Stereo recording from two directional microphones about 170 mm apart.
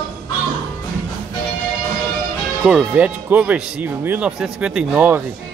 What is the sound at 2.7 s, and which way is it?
Speech, 5° right (ahead or behind).